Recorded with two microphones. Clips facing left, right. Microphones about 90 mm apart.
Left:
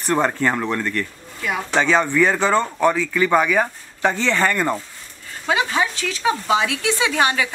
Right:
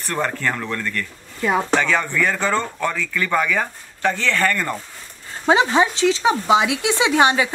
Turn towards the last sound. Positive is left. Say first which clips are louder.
# right 3 dB
turn(degrees=-25)  # may be behind; listen again after turning